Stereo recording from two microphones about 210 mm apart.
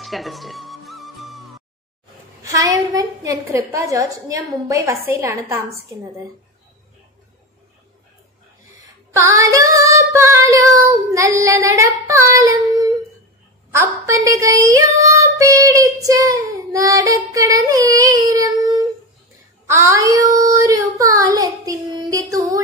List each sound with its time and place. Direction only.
0.0 s music: centre (ahead or behind)
2.4 s female singing: 15° right (ahead or behind)
9.1 s female singing: 15° right (ahead or behind)
19.7 s female singing: 15° right (ahead or behind)